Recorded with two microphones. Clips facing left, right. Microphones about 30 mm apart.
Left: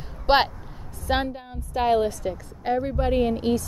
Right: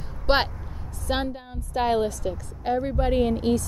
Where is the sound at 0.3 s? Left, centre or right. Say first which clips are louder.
Left 3 dB; centre.